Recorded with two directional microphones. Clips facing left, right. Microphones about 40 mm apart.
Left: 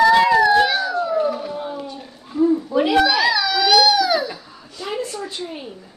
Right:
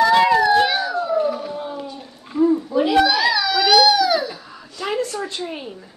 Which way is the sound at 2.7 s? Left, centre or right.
Left.